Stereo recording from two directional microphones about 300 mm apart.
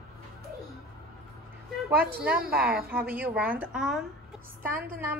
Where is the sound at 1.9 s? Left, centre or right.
Right.